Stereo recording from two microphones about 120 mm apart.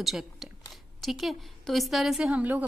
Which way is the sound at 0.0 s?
Centre (ahead or behind).